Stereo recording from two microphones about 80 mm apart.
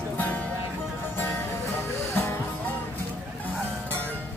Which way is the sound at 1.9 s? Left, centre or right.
Left.